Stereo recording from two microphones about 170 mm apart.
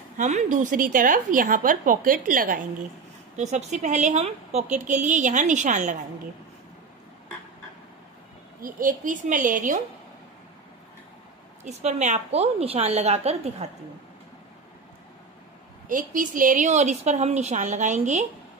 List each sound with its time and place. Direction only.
0.2 s a woman's voice: 45° right (ahead or behind)
3.3 s a woman's voice: 45° right (ahead or behind)
8.5 s a woman's voice: 55° right (ahead or behind)
11.6 s a woman's voice: 45° right (ahead or behind)
15.9 s a woman's voice: 50° right (ahead or behind)